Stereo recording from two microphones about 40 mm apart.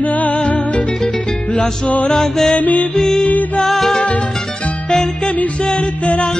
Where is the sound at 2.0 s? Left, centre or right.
Centre.